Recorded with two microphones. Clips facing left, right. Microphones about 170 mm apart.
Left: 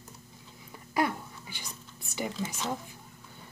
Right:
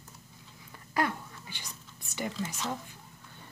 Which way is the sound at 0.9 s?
10° left (ahead or behind).